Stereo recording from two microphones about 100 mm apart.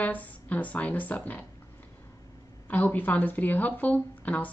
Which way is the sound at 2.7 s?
15° left (ahead or behind).